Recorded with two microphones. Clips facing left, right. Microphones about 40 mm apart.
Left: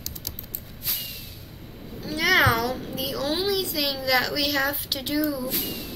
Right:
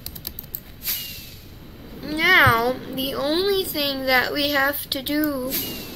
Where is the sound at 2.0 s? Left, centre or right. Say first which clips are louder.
Right 4 dB; centre.